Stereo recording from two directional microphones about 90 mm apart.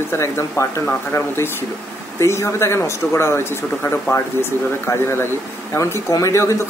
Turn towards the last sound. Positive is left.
turn(degrees=35)  # may be behind; listen again after turning